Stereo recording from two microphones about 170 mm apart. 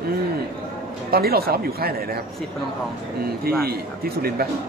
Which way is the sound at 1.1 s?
65° right (ahead or behind).